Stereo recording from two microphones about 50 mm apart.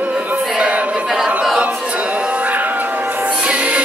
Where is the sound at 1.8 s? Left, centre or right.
Right.